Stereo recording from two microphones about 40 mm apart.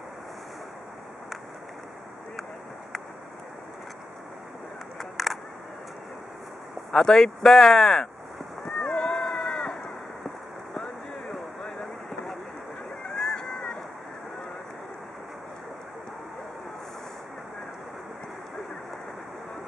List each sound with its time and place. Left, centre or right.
4.9 s single-lens reflex camera: centre
6.9 s speech: centre
8.9 s cat: centre
9.4 s a sound: left
11.8 s vehicle: centre
13.1 s boat: centre